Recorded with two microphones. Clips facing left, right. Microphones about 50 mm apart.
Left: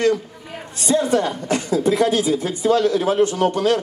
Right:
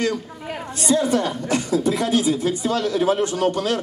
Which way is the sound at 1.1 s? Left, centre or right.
Left.